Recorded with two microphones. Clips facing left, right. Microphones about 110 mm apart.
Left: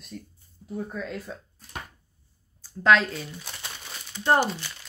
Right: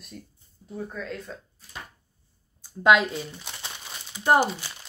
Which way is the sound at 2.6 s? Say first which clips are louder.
Right 1 dB; 15° right (ahead or behind).